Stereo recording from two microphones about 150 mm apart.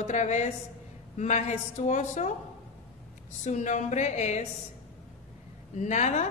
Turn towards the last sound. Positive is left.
turn(degrees=50)  # may be behind; listen again after turning